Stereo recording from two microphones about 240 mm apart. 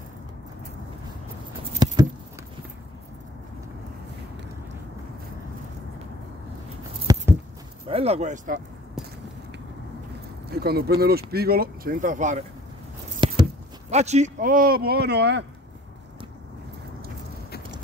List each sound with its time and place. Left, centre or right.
1.6 s patter: centre
7.1 s a sound: centre
7.9 s speech: right
10.6 s speech: right